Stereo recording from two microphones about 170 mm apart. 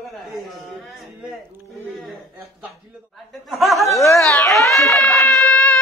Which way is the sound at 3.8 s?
20° left (ahead or behind).